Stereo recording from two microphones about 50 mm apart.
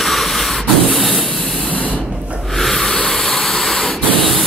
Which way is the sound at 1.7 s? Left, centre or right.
Left.